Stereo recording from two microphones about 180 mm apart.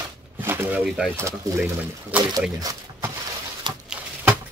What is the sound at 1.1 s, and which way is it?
Speech, 15° right (ahead or behind).